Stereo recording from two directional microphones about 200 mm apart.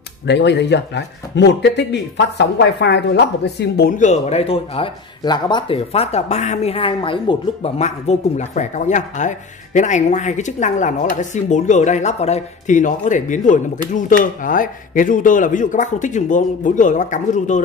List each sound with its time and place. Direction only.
0.3 s speech: 60° left (ahead or behind); by 17.6 s 40° left (ahead or behind)